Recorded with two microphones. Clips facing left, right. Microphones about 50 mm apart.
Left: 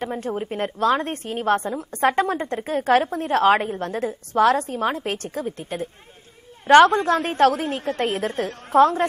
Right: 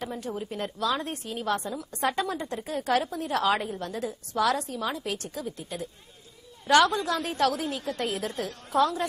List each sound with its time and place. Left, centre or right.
0.0 s a woman's voice: left